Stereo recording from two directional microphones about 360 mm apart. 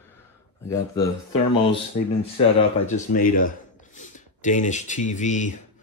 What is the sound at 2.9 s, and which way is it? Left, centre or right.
Speech, left.